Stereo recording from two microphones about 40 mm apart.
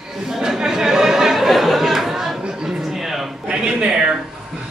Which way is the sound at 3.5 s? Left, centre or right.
Right.